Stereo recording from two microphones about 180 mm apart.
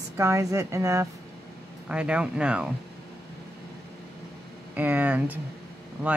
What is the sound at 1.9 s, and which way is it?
Speech, 5° right (ahead or behind).